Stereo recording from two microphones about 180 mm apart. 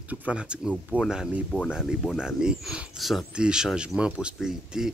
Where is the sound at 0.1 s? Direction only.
5° right (ahead or behind).